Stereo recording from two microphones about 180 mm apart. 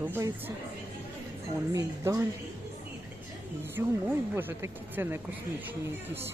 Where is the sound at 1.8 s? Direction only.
20° right (ahead or behind).